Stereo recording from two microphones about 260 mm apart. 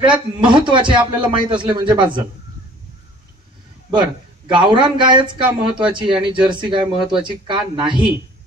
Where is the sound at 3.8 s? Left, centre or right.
Centre.